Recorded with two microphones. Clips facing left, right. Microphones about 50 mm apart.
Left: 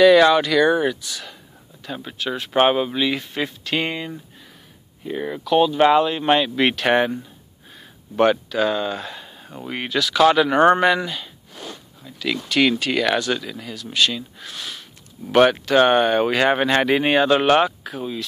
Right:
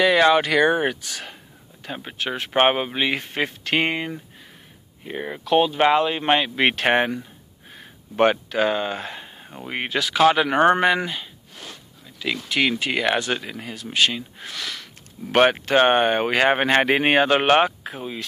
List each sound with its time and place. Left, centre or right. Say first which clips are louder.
0.0 s speech: left 4 dB; centre
0.4 s speech: left 1 dB; right
5.0 s speech: left 3 dB; right
7.7 s a sound: left 3 dB; right
9.7 s speech: left 1 dB; right
12.2 s speech: left 3 dB; centre; by 14.5 s right
14.5 s a sound: right 3 dB; right
15.3 s speech: left 2 dB; right